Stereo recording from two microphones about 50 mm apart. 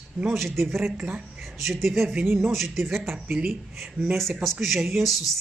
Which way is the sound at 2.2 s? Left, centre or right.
Right.